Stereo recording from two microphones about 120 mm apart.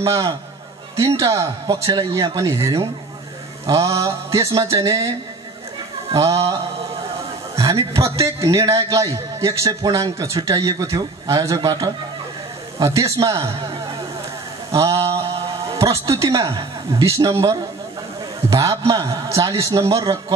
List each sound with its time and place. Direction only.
0.0 s a man's voice: 25° right (ahead or behind)
6.1 s a man's voice: 30° right (ahead or behind)
14.7 s mantra: 25° right (ahead or behind)
15.7 s a man's voice: 25° right (ahead or behind)